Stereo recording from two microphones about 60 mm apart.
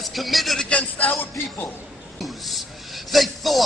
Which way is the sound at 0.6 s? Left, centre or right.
Left.